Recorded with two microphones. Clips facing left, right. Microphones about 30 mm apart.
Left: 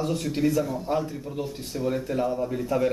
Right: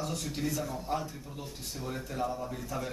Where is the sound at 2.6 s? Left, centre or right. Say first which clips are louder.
Left 13 dB; left.